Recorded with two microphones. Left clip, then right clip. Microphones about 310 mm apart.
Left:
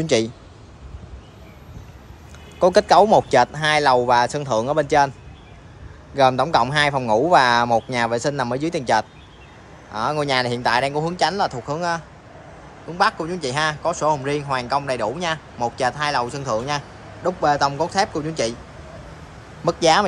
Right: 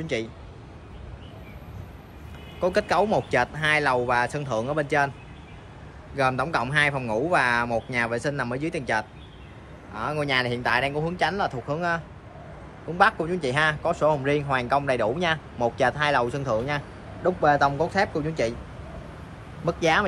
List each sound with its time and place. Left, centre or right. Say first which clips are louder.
0.0 s a man's voice: left 10 dB; centre
2.6 s a man's voice: left 9 dB; centre
6.1 s a man's voice: left 8 dB; centre
19.6 s a man's voice: left 6 dB; centre